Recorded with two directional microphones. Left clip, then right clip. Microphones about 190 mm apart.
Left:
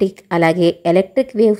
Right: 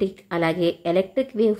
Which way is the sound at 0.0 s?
30° left (ahead or behind).